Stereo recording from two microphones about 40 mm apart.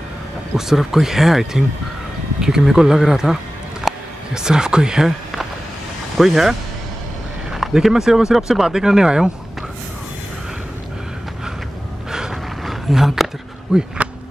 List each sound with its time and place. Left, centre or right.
0.6 s speech: centre
3.9 s a sound: centre
4.3 s speech: centre
6.1 s speech: centre
7.5 s speech: centre
12.1 s a sound: centre
12.6 s roaring cats: centre
13.7 s speech: centre